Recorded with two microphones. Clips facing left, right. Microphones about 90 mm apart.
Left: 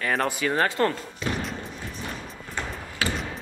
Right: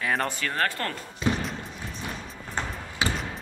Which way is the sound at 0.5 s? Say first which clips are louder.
Left 7 dB; 20° left (ahead or behind).